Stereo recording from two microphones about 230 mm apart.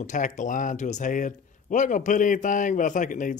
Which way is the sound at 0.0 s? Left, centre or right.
Left.